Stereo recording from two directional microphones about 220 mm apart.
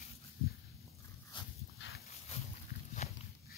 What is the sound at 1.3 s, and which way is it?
Dog, 20° left (ahead or behind).